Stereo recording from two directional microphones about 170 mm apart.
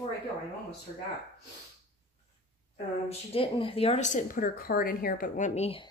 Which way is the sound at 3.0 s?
30° left (ahead or behind).